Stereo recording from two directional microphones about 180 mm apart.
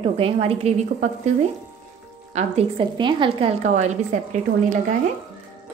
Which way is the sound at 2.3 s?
35° right (ahead or behind).